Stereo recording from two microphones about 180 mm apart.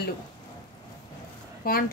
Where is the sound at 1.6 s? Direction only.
55° left (ahead or behind).